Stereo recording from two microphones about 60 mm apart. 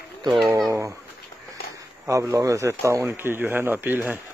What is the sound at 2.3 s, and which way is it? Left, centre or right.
Speech, right.